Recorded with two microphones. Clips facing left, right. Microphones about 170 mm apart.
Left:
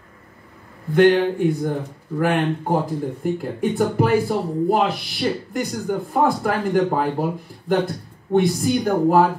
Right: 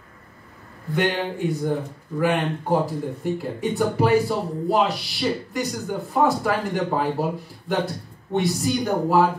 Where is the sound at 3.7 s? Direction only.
50° left (ahead or behind).